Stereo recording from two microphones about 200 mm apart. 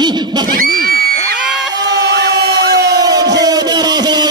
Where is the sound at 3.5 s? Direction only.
20° right (ahead or behind).